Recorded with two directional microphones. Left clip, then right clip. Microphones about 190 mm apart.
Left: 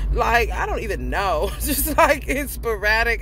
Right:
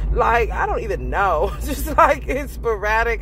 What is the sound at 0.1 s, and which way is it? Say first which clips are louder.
Speech: right 2 dB; 25° left (ahead or behind).